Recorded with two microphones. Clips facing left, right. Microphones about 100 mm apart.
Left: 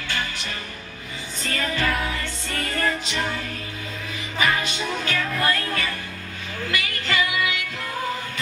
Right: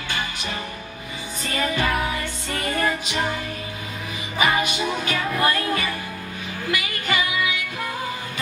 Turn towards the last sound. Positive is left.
turn(degrees=-15)  # may be behind; listen again after turning